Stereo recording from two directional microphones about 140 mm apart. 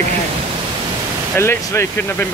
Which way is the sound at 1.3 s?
15° left (ahead or behind).